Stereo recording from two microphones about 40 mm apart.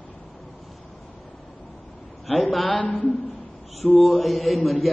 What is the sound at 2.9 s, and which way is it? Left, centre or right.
Speech, left.